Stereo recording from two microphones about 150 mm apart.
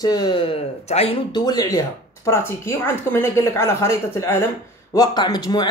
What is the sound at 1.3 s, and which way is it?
A woman's voice, 25° left (ahead or behind).